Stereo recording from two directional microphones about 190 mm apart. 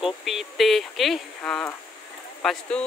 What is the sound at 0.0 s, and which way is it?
Speech, centre (ahead or behind).